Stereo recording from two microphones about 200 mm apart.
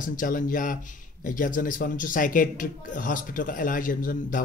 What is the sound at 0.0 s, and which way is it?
A man's voice, 40° left (ahead or behind).